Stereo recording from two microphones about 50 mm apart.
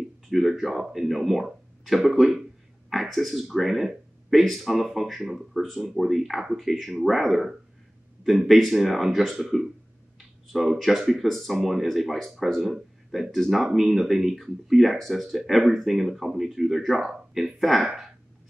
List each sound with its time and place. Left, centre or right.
0.3 s speech: centre
10.1 s a sound: centre
11.0 s speech: centre